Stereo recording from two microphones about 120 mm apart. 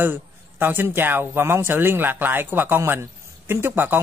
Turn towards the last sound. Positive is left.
turn(degrees=-15)  # may be behind; listen again after turning